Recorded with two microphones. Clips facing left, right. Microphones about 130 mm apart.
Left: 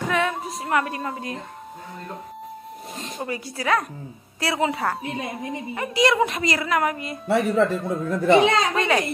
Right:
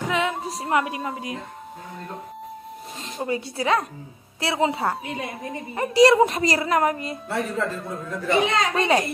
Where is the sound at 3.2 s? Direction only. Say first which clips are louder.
Right 3 dB; 25° right (ahead or behind).